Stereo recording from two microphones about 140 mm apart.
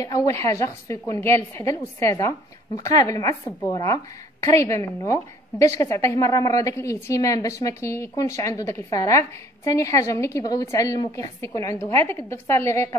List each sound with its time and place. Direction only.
0.0 s a woman's voice: 25° left (ahead or behind)